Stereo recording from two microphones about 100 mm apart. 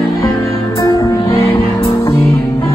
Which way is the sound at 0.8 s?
35° left (ahead or behind).